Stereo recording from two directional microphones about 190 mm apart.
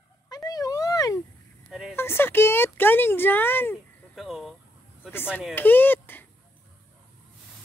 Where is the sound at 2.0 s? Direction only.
10° left (ahead or behind).